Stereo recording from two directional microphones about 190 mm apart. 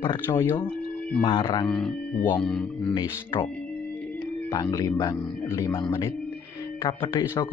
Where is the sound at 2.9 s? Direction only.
20° left (ahead or behind).